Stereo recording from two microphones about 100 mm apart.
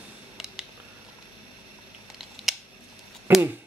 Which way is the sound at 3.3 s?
20° right (ahead or behind).